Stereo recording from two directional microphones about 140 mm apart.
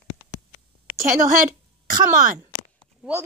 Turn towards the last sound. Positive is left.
turn(degrees=-5)  # may be behind; listen again after turning